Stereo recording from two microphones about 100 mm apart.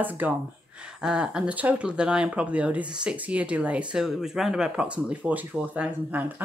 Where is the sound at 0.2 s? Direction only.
15° right (ahead or behind).